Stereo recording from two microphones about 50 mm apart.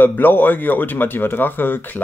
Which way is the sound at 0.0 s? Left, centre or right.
Left.